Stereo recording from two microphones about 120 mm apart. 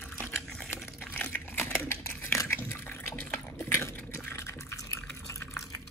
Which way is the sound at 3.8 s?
20° left (ahead or behind).